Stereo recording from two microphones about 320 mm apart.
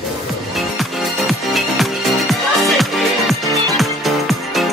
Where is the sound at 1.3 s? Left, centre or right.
Centre.